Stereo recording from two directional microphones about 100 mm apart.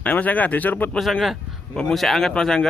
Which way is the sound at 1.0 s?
Centre (ahead or behind).